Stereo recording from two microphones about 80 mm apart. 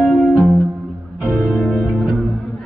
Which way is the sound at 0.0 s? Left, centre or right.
Centre.